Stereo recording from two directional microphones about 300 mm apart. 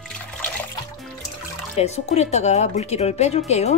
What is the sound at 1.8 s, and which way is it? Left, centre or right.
Speech, left.